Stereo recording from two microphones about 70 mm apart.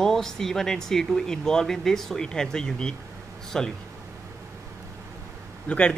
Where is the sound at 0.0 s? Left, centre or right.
Centre.